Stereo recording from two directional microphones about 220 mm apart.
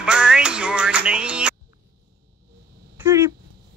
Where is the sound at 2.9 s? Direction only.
10° right (ahead or behind).